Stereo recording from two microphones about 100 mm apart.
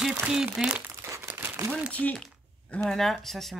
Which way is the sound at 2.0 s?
5° left (ahead or behind).